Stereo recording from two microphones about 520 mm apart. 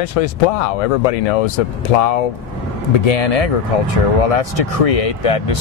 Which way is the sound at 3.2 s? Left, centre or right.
Left.